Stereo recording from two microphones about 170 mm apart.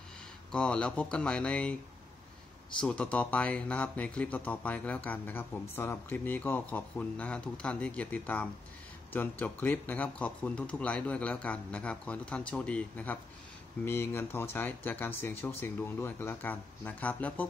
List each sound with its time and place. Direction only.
0.5 s speech: 5° left (ahead or behind)
2.8 s speech: 5° left (ahead or behind)